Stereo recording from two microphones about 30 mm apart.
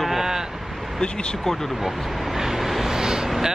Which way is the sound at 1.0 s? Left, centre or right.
Left.